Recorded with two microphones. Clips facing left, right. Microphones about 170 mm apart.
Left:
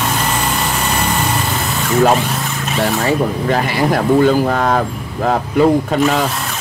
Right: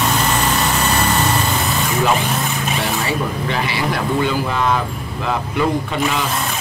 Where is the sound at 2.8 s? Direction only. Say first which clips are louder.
Left 9 dB; 45° left (ahead or behind).